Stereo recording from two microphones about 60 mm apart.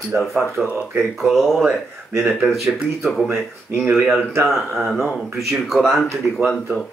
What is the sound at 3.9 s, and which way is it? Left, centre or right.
Speech, centre.